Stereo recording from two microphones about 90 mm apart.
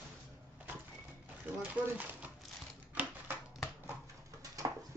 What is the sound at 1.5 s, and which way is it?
Speech, 20° right (ahead or behind).